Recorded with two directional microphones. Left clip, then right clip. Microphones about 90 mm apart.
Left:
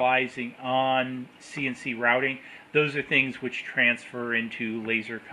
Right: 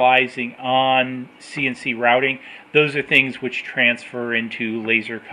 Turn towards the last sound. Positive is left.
turn(degrees=-25)  # may be behind; listen again after turning